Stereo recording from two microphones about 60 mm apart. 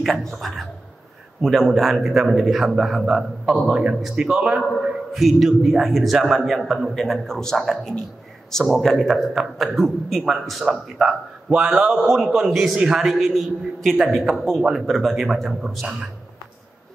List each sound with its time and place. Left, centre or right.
0.3 s a man's voice: centre
4.8 s a man's voice: centre
12.0 s speech: centre
13.0 s a man's voice: centre